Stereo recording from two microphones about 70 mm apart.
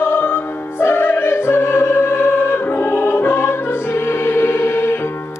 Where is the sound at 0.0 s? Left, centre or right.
Left.